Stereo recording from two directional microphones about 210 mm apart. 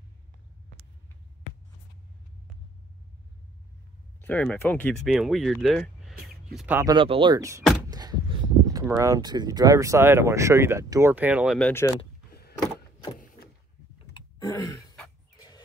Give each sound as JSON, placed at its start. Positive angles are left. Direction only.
{"t": 4.2, "sound": "speech", "side_deg": 5}
{"t": 6.8, "sound": "speech", "side_deg": -20}
{"t": 7.9, "sound": "a sound", "side_deg": -20}
{"t": 8.9, "sound": "speech", "side_deg": -15}
{"t": 12.3, "sound": "power windows", "side_deg": 50}
{"t": 13.2, "sound": "vehicle", "side_deg": 40}
{"t": 13.9, "sound": "a sound", "side_deg": 20}